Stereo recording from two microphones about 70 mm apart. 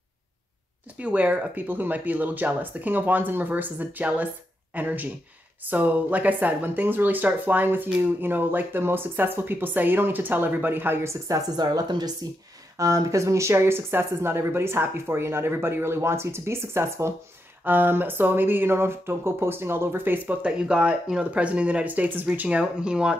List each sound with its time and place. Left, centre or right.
0.9 s speech: right
11.2 s speech: right
12.7 s speech: right
20.4 s speech: centre